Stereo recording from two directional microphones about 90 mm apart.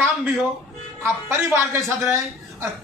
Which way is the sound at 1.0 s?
30° right (ahead or behind).